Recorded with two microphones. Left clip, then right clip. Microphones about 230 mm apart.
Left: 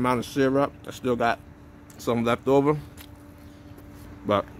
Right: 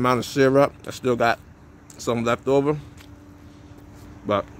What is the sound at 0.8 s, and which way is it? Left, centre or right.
Speech, right.